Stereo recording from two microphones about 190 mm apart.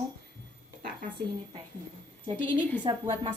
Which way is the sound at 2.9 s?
25° right (ahead or behind).